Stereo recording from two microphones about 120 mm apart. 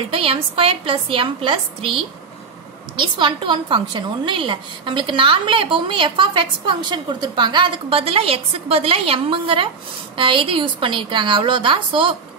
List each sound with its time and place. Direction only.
0.1 s a woman's voice: 50° right (ahead or behind)
3.0 s a woman's voice: 40° right (ahead or behind)